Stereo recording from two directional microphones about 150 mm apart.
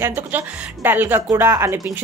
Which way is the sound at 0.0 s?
10° right (ahead or behind).